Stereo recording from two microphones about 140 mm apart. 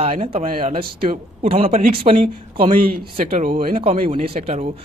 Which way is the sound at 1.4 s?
45° right (ahead or behind).